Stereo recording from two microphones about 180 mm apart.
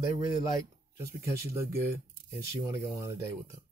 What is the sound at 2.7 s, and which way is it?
Speech, 15° right (ahead or behind).